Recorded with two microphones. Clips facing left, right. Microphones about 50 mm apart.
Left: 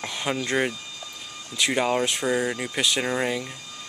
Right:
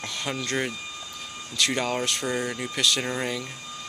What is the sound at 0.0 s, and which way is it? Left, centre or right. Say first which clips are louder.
Speech: left 3 dB; centre.